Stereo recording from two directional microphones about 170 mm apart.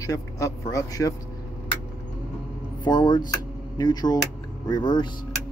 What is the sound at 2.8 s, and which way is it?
Speech, 25° left (ahead or behind).